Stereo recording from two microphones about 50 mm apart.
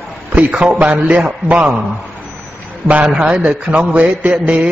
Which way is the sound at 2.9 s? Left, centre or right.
Right.